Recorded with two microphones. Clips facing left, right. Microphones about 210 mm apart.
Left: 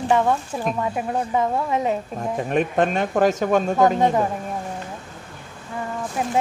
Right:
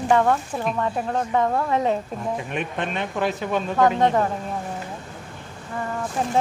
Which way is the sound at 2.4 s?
40° left (ahead or behind).